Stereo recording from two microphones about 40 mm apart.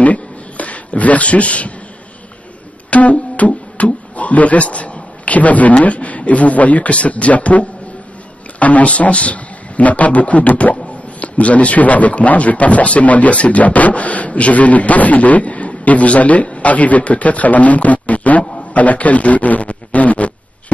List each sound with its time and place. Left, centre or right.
0.0 s a sound: left
2.9 s music: left
8.5 s a man's voice: left